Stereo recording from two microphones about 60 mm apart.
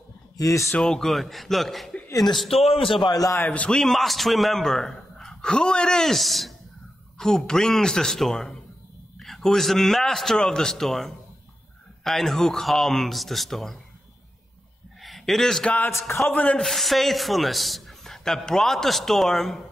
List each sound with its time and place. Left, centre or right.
0.4 s speech: left
0.7 s a man's voice: centre
3.1 s a man's voice: left
3.3 s a man's voice: left
3.7 s speech: centre
6.1 s a man's voice: centre
15.0 s a sound: centre
15.6 s a man's voice: left
16.5 s a man's voice: centre